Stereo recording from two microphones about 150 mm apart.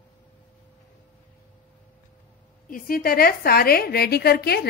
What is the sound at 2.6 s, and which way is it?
A woman's voice, 70° left (ahead or behind).